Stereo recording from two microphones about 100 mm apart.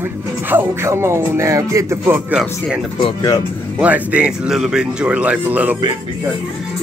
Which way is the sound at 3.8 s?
15° right (ahead or behind).